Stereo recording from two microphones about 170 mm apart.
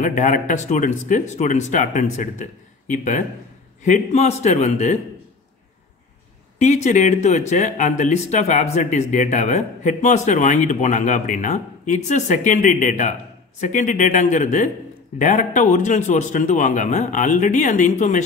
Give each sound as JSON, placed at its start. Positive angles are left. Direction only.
{"t": 0.0, "sound": "a man's voice", "side_deg": 50}
{"t": 6.6, "sound": "speech", "side_deg": 45}